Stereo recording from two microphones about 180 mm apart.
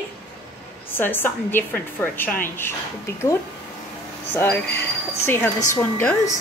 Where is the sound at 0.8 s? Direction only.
10° left (ahead or behind).